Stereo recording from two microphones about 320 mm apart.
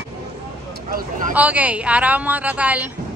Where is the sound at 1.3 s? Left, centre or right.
Centre.